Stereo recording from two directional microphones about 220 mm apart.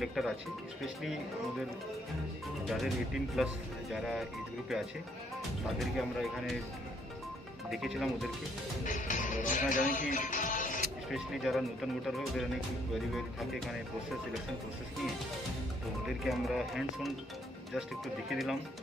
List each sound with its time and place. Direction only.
0.0 s speech: centre (ahead or behind)
2.7 s speech: centre (ahead or behind)
7.7 s speech: centre (ahead or behind)
8.8 s music: 35° left (ahead or behind)
11.1 s speech: centre (ahead or behind)
16.3 s speech: centre (ahead or behind)